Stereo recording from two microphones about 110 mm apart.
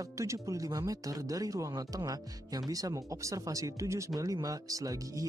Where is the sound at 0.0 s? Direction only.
30° right (ahead or behind).